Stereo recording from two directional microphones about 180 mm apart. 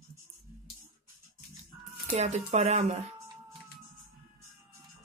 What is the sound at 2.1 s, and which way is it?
Speech, 40° right (ahead or behind).